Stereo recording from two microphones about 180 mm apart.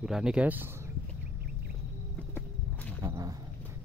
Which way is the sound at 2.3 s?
10° left (ahead or behind).